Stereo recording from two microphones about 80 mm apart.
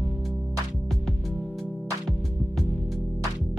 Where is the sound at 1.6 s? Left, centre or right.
Centre.